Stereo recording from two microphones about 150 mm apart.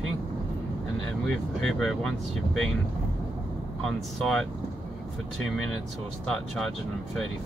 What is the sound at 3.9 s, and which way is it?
Speech, centre (ahead or behind).